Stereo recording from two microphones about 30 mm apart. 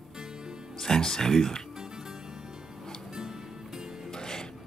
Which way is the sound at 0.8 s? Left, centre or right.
Centre.